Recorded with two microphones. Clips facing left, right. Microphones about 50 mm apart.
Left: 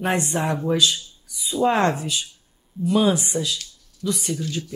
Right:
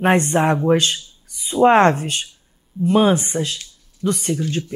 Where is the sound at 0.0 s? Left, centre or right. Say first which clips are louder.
Right 7 dB; right.